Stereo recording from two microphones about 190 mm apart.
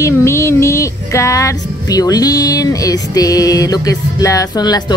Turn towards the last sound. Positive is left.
turn(degrees=20)  # may be behind; listen again after turning